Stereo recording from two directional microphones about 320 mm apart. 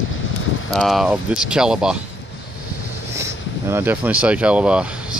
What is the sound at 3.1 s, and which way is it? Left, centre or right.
Speech, centre.